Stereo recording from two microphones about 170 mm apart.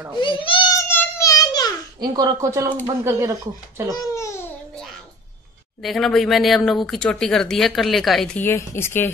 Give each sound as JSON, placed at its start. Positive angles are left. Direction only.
{"t": 0.2, "sound": "a child's voice", "side_deg": 30}
{"t": 0.8, "sound": "a sound", "side_deg": 15}
{"t": 2.0, "sound": "speech", "side_deg": -20}
{"t": 3.9, "sound": "speech", "side_deg": 20}
{"t": 5.8, "sound": "speech", "side_deg": 0}